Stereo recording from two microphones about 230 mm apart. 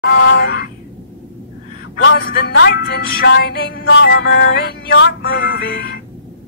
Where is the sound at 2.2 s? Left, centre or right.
Left.